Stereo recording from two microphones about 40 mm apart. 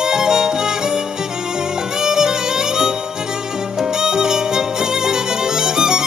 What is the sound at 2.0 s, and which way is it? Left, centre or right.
Music, centre.